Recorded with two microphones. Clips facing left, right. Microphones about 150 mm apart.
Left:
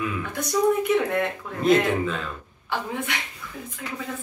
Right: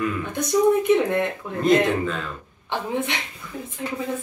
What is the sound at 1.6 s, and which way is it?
Speech, centre (ahead or behind).